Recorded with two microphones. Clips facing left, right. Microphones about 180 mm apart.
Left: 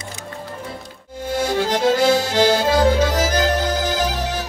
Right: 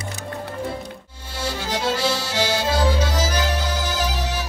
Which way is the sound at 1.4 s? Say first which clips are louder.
Left 6 dB; 50° left (ahead or behind).